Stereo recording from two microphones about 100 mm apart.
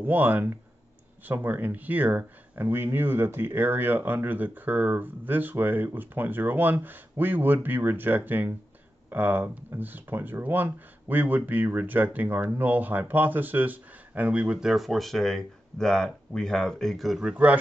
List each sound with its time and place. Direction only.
0.0 s speech: 20° right (ahead or behind)